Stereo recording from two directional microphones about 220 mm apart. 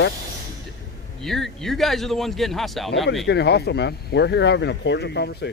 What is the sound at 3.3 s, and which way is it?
Speech, 50° left (ahead or behind).